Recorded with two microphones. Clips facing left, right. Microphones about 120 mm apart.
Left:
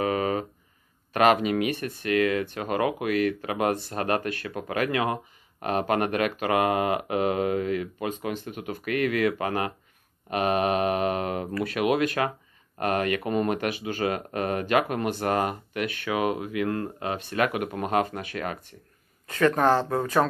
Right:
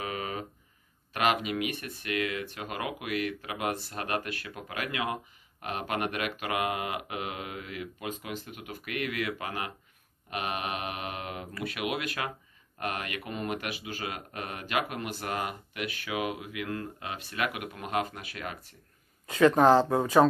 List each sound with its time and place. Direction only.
0.0 s a sound: 45° left (ahead or behind)
1.1 s speech: 45° left (ahead or behind)
19.2 s speech: 10° right (ahead or behind)